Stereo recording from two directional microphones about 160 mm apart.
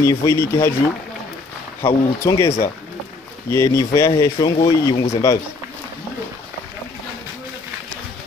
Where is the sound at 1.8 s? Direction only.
15° left (ahead or behind).